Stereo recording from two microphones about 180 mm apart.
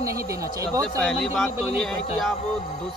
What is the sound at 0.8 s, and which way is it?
Speech, centre (ahead or behind).